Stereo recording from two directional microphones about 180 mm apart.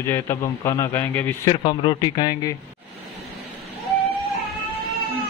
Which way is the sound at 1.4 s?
25° left (ahead or behind).